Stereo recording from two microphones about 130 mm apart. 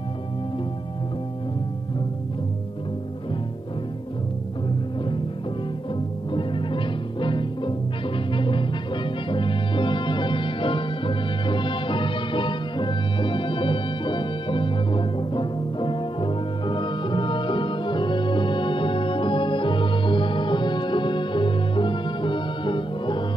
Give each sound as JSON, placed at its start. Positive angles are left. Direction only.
{"t": 6.3, "sound": "music", "side_deg": 40}